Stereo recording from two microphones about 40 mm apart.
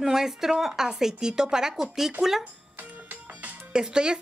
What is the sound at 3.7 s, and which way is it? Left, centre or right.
Speech, centre.